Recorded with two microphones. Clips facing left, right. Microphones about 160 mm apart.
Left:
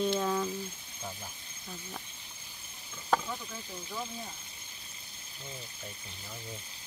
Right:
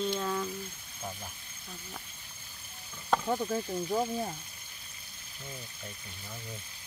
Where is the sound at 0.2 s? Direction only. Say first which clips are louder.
Left 2 dB; 5° left (ahead or behind).